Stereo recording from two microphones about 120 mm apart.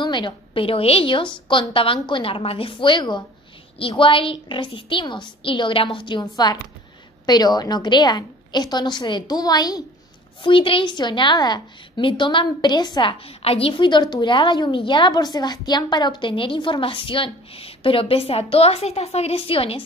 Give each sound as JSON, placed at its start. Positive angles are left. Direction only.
{"t": 0.0, "sound": "a woman's voice", "side_deg": 40}
{"t": 10.4, "sound": "a woman's voice", "side_deg": 45}
{"t": 13.4, "sound": "a woman's voice", "side_deg": 55}